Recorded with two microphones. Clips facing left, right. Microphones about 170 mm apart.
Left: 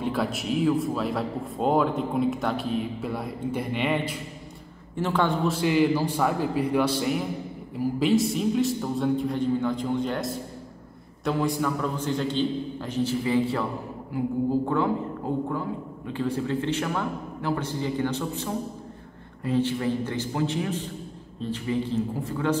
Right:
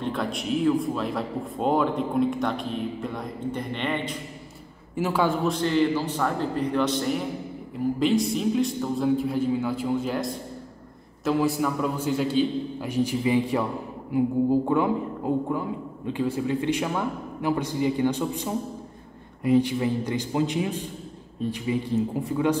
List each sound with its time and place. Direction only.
0.0 s a man's voice: 5° left (ahead or behind)
4.9 s a man's voice: 10° right (ahead or behind)
5.6 s a man's voice: 10° left (ahead or behind); by 14.9 s 15° right (ahead or behind)
16.1 s a man's voice: 10° right (ahead or behind)